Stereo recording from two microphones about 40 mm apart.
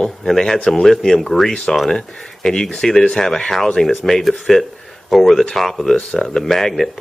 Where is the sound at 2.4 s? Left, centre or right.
Centre.